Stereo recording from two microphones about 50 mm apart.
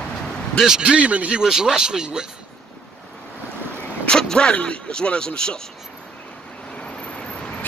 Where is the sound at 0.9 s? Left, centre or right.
Right.